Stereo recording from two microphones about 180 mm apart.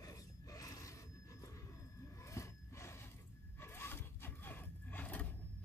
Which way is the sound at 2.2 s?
15° left (ahead or behind).